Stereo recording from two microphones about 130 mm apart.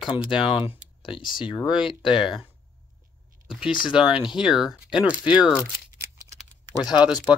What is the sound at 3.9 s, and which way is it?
Speech, 5° right (ahead or behind).